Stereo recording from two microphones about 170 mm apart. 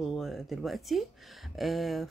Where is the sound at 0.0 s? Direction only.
Centre (ahead or behind).